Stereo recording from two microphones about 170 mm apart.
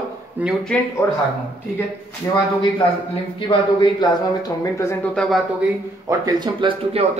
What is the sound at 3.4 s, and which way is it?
Speech, 25° left (ahead or behind).